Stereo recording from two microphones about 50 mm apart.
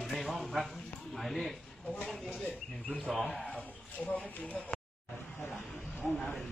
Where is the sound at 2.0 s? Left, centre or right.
Centre.